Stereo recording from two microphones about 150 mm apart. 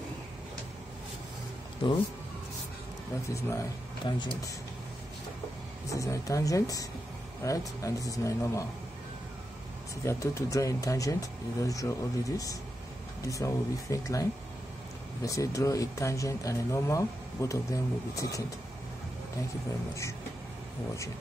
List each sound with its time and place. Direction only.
1.8 s speech: 35° left (ahead or behind)
4.0 s speech: 30° left (ahead or behind)
5.9 s speech: 20° left (ahead or behind)
10.0 s speech: 20° left (ahead or behind)
15.2 s speech: 20° left (ahead or behind)